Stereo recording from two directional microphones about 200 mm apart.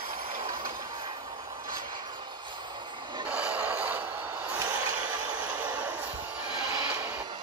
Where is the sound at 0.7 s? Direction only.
20° right (ahead or behind).